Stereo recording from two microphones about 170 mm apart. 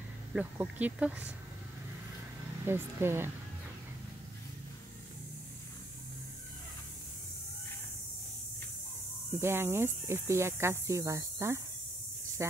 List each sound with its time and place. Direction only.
0.3 s speech: 10° right (ahead or behind)
2.6 s speech: 15° right (ahead or behind)
9.4 s speech: 15° right (ahead or behind)